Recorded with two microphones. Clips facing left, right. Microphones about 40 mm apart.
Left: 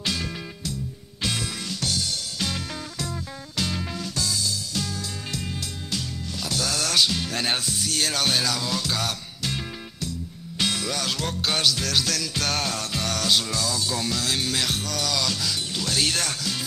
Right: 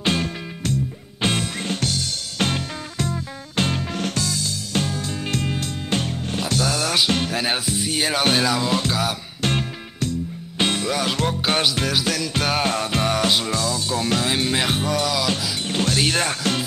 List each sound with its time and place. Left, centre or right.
0.0 s music: right
6.6 s music: centre
8.6 s music: right
9.4 s music: right
10.6 s music: right
10.9 s music: centre
11.4 s music: right
12.6 s music: right
15.7 s speech: right
16.0 s music: right